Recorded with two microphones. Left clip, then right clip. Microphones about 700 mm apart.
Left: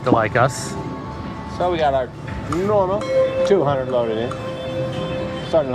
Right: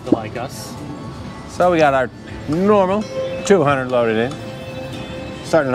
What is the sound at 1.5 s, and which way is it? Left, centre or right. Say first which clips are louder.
Speech: right 5 dB; right.